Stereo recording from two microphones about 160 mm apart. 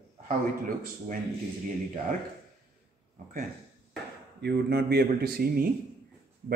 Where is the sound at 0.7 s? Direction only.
60° right (ahead or behind).